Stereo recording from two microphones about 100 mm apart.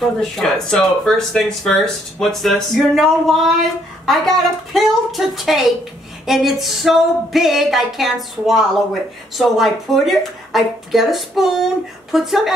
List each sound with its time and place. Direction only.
0.0 s speech: 5° left (ahead or behind)